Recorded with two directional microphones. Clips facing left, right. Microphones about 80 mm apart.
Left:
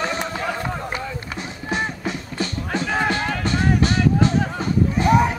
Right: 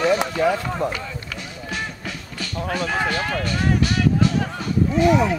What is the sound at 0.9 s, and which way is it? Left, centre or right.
Run, left.